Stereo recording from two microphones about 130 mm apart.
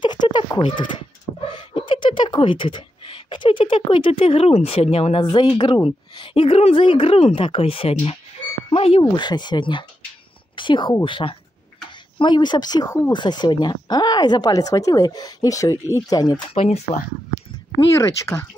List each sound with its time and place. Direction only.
0.0 s a woman's voice: 35° left (ahead or behind); by 5.2 s 50° left (ahead or behind)
5.2 s speech: 35° left (ahead or behind)
8.6 s a sound: 45° left (ahead or behind)
9.0 s speech: 35° left (ahead or behind)
10.5 s a sound: 40° left (ahead or behind)
11.1 s speech: 40° left (ahead or behind)
16.4 s speech: 50° left (ahead or behind)
18.2 s speech: 20° left (ahead or behind)